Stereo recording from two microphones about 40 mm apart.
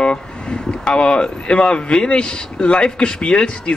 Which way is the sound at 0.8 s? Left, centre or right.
Left.